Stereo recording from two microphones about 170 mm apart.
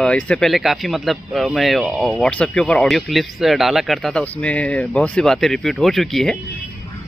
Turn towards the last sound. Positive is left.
turn(degrees=0)  # may be behind; listen again after turning